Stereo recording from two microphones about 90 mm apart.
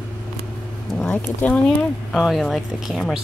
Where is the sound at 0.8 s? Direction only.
10° left (ahead or behind).